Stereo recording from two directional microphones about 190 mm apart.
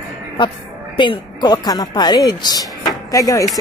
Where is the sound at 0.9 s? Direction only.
25° left (ahead or behind).